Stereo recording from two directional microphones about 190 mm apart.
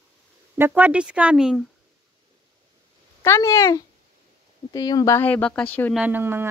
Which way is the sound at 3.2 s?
15° left (ahead or behind).